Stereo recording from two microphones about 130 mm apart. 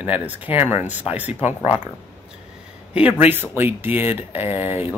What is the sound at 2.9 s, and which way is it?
Speech, 10° right (ahead or behind).